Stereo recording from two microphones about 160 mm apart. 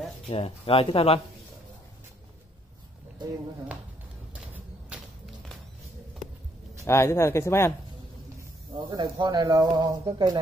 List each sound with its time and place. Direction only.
0.3 s speech: 40° left (ahead or behind)
4.9 s whip: 5° right (ahead or behind)
6.8 s speech: 15° left (ahead or behind)
8.7 s speech: 30° right (ahead or behind)